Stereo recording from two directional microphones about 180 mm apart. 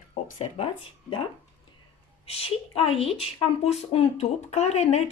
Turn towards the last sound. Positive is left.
turn(degrees=35)  # may be behind; listen again after turning